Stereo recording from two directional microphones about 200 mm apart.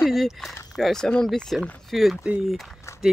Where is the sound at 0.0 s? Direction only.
Centre (ahead or behind).